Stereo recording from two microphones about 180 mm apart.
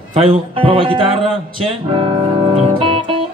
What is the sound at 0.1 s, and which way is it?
Speech, 30° right (ahead or behind).